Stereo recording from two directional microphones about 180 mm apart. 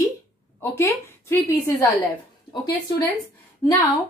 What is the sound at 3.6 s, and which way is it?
Speech, 15° left (ahead or behind).